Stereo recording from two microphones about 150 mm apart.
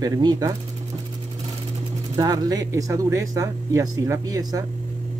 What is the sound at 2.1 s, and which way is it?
Speech, 25° right (ahead or behind).